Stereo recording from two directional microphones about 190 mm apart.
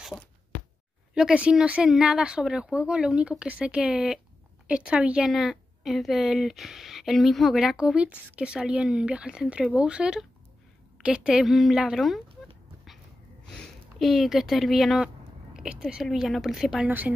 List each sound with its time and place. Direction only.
1.1 s speech: 5° right (ahead or behind)
13.5 s speech: centre (ahead or behind)